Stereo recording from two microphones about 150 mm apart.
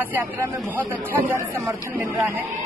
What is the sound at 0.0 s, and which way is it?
Speech, 10° right (ahead or behind).